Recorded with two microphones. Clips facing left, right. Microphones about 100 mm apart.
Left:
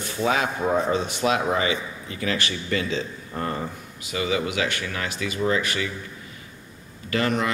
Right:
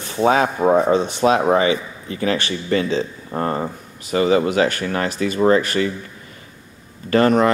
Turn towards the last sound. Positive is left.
turn(degrees=-40)  # may be behind; listen again after turning